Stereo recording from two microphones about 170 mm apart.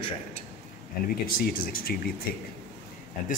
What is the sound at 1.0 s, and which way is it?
A man's voice, 60° left (ahead or behind).